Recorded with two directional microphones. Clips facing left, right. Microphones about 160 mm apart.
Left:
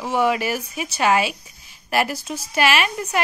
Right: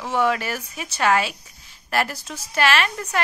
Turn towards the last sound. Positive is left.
turn(degrees=10)  # may be behind; listen again after turning